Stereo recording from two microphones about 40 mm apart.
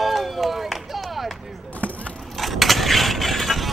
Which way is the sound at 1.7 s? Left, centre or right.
Left.